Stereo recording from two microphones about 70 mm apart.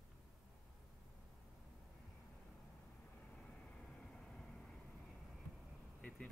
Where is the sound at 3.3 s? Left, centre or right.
Centre.